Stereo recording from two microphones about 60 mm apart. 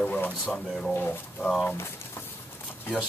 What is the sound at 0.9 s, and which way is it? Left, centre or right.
Speech, left.